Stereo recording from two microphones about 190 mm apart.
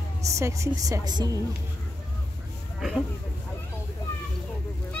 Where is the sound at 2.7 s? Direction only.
Centre (ahead or behind).